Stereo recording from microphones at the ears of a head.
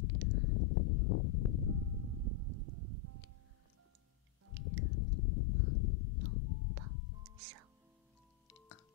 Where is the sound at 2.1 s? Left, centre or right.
Right.